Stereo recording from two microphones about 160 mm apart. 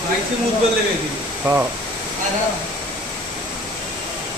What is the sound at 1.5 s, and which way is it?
Speech, 15° right (ahead or behind).